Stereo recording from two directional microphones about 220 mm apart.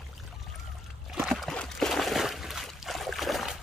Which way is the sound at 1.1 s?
Centre (ahead or behind).